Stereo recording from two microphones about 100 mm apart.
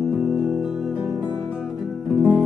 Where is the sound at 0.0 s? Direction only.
Centre (ahead or behind).